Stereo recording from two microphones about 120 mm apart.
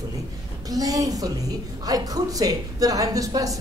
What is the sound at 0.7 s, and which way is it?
A man's voice, 30° right (ahead or behind).